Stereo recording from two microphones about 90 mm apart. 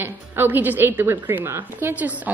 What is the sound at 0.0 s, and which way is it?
A woman's voice, 20° right (ahead or behind).